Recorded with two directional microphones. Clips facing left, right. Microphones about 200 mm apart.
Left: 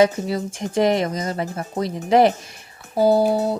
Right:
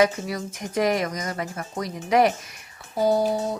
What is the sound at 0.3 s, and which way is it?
A woman's voice, 25° left (ahead or behind).